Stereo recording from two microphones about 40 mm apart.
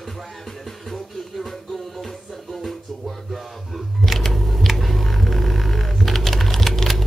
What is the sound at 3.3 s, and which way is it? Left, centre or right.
Music, centre.